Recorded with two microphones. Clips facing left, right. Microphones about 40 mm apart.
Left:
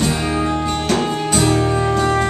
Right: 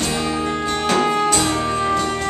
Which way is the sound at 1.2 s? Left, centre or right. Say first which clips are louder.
Left 2 dB; centre.